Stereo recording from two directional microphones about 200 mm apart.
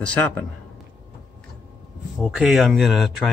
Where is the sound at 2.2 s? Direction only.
Centre (ahead or behind).